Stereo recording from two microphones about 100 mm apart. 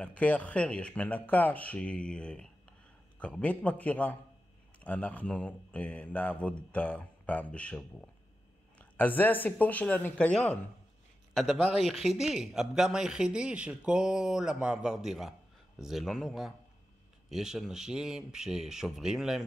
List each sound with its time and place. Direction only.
0.0 s speech: 15° left (ahead or behind)
11.3 s speech: 5° right (ahead or behind)